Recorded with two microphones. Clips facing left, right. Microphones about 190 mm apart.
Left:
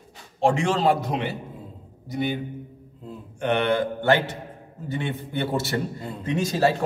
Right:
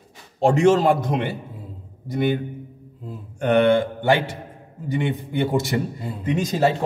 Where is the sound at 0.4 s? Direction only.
40° right (ahead or behind); by 2.3 s 55° right (ahead or behind).